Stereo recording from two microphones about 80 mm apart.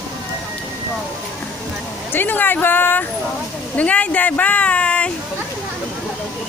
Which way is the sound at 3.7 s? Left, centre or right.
Centre.